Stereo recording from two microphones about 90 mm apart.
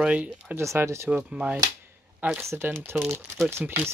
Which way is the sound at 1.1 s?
10° right (ahead or behind).